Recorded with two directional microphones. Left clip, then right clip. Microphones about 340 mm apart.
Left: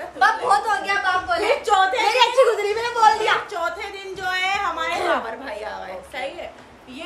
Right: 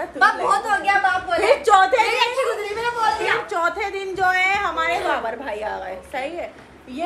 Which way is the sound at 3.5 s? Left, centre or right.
Centre.